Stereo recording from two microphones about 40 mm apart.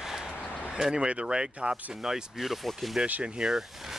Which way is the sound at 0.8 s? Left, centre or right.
Centre.